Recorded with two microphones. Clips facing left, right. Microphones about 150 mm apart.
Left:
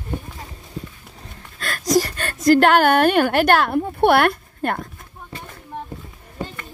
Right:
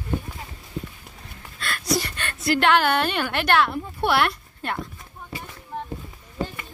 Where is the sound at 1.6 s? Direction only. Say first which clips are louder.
Left 6 dB; 45° left (ahead or behind).